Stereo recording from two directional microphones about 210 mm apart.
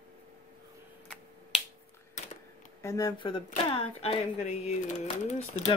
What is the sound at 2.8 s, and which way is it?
Speech, 15° left (ahead or behind).